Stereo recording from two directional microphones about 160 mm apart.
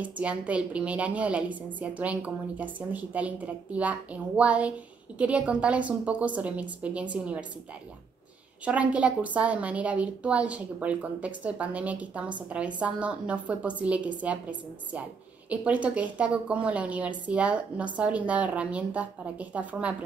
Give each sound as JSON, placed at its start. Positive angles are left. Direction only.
{"t": 0.0, "sound": "a woman's voice", "side_deg": -10}
{"t": 8.6, "sound": "a woman's voice", "side_deg": -10}
{"t": 15.5, "sound": "a woman's voice", "side_deg": -10}